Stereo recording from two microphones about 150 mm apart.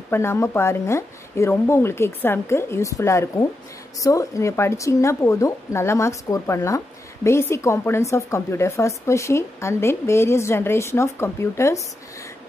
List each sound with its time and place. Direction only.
0.1 s speech: 15° left (ahead or behind)